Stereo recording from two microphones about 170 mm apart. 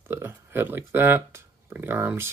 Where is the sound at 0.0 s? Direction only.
15° right (ahead or behind).